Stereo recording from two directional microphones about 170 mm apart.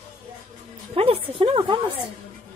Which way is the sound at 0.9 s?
35° right (ahead or behind).